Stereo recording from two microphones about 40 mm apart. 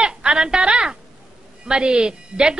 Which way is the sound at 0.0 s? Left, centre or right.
Right.